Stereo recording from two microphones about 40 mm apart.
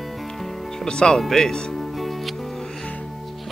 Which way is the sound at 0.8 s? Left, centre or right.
Left.